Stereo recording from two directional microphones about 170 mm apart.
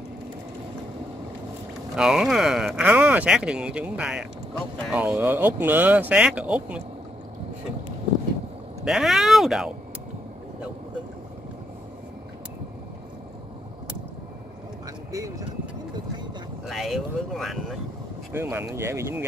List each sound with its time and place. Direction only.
2.0 s speech: 5° right (ahead or behind)
8.8 s speech: centre (ahead or behind)
15.1 s speech: 20° right (ahead or behind)
16.6 s speech: centre (ahead or behind)
18.3 s speech: 15° right (ahead or behind)